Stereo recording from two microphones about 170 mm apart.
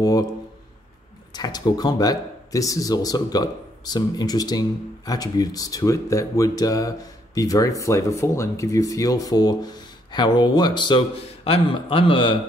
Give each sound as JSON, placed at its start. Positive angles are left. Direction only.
{"t": 0.0, "sound": "speech", "side_deg": 20}
{"t": 1.3, "sound": "speech", "side_deg": 25}